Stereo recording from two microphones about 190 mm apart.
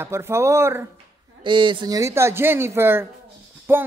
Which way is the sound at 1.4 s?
25° right (ahead or behind).